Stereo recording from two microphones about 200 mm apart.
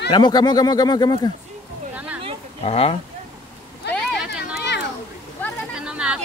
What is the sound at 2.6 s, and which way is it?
Speech, 30° left (ahead or behind).